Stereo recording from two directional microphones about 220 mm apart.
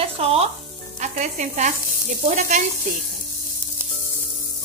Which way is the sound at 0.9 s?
35° right (ahead or behind).